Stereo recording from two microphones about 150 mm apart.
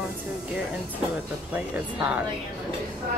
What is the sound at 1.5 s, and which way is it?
Speech, 10° right (ahead or behind).